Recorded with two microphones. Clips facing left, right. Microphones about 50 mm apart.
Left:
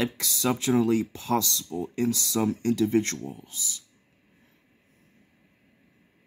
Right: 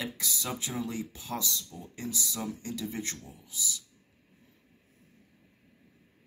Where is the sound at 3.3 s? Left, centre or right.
Left.